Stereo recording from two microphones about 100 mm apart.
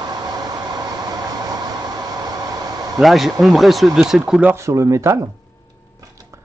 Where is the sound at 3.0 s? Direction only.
Centre (ahead or behind).